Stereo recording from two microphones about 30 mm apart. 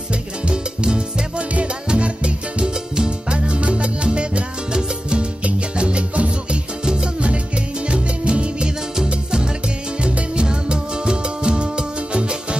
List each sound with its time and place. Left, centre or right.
0.1 s salsa music: right
1.7 s music: right
2.6 s music: right
3.1 s salsa music: right
4.8 s music: right
6.8 s salsa music: right
7.2 s music: right
9.1 s salsa music: right
9.9 s music: right